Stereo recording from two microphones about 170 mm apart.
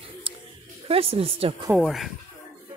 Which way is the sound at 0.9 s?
35° right (ahead or behind).